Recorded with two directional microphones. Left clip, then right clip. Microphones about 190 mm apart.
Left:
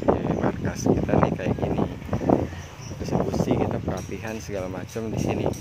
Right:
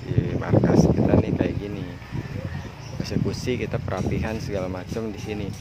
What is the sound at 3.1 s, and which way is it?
Speech, 10° right (ahead or behind).